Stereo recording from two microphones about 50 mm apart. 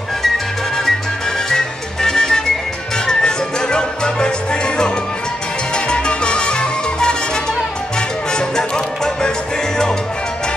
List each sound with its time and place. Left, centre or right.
1.5 s music: centre
8.3 s music: centre